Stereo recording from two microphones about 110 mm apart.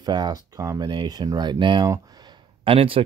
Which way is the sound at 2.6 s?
55° right (ahead or behind).